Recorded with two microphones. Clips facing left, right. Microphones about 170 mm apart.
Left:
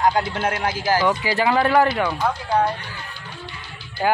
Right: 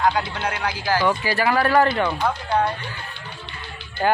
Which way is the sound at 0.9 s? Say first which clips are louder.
Even; 15° left (ahead or behind).